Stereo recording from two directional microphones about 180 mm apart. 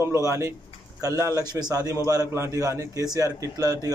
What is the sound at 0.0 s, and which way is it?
A man's voice, 15° right (ahead or behind).